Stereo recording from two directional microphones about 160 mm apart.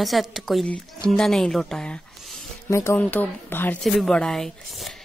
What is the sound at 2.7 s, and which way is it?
A woman's voice, 15° left (ahead or behind).